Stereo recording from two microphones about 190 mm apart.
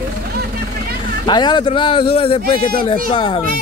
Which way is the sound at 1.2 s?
25° left (ahead or behind).